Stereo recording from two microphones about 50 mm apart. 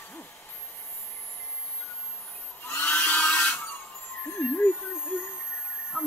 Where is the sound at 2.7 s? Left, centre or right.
Left.